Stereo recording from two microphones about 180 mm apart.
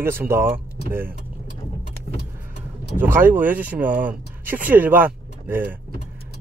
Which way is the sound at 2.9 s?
10° right (ahead or behind).